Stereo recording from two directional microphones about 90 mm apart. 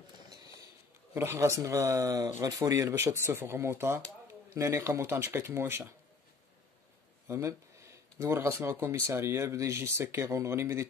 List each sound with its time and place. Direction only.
0.3 s a sound: 45° right (ahead or behind)
1.1 s speech: 30° right (ahead or behind)
7.2 s speech: 35° right (ahead or behind)